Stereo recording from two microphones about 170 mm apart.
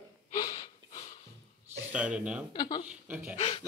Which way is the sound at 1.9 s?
5° right (ahead or behind).